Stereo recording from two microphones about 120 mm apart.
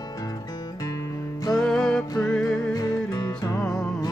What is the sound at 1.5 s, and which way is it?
Music, 5° left (ahead or behind).